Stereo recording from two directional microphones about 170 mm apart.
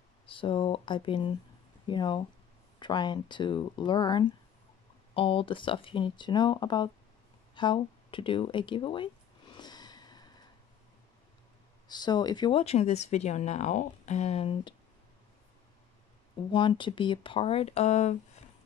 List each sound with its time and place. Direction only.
0.3 s speech: 30° left (ahead or behind)
7.5 s a sound: 30° left (ahead or behind)
11.9 s speech: 25° left (ahead or behind)
16.5 s speech: 30° left (ahead or behind)